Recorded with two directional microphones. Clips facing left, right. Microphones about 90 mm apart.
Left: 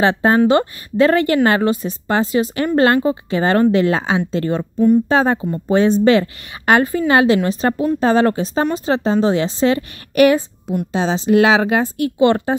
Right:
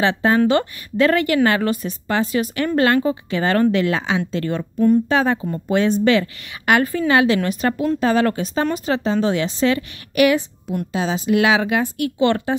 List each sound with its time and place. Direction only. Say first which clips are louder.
0.0 s a woman's voice: left 3 dB; 35° left (ahead or behind)
4.7 s speech: left 2 dB; 10° left (ahead or behind)
5.0 s a woman's voice: left 3 dB; 35° left (ahead or behind)